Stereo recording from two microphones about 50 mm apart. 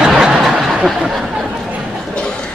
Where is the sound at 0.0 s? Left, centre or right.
Centre.